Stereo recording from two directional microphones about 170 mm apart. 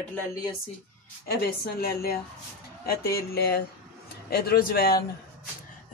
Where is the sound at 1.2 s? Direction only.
65° left (ahead or behind).